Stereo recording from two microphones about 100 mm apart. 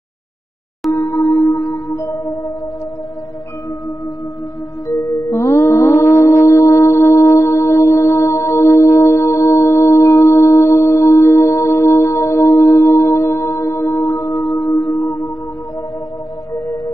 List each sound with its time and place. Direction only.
0.9 s music: 35° left (ahead or behind)
4.8 s music: 30° left (ahead or behind)
16.5 s music: 35° left (ahead or behind)